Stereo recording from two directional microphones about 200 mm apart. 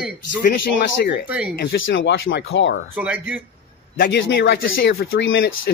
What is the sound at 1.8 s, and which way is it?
Speech, 65° left (ahead or behind).